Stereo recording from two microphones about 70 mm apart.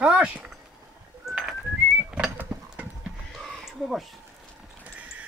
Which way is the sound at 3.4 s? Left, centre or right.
Centre.